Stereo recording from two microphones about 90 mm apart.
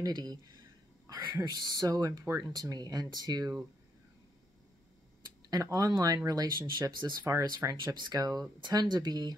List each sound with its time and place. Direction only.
0.0 s speech: 45° right (ahead or behind)
5.5 s speech: 40° right (ahead or behind)
7.7 s speech: 55° right (ahead or behind)